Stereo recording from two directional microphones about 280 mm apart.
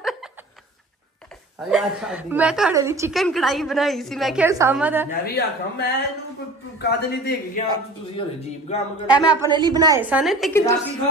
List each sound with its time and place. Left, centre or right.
1.7 s a woman's voice: centre
3.2 s a woman's voice: centre
5.2 s a man's voice: left
8.2 s speech: centre
9.3 s a woman's voice: centre